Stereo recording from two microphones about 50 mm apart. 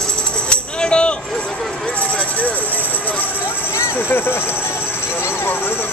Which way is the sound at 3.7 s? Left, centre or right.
Left.